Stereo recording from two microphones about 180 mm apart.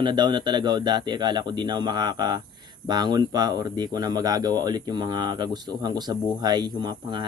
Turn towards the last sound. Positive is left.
turn(degrees=-25)  # may be behind; listen again after turning